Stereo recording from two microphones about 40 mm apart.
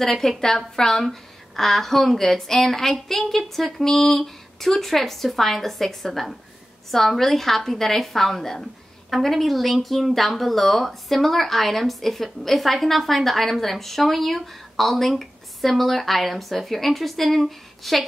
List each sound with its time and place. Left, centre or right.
0.0 s a woman's voice: centre